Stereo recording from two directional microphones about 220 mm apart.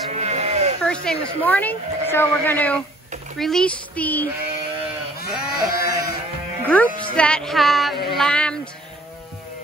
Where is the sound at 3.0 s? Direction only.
35° right (ahead or behind).